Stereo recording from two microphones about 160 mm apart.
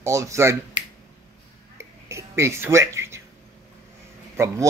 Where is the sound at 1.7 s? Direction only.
15° right (ahead or behind).